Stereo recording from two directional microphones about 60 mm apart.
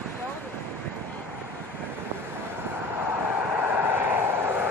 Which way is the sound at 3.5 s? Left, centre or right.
Right.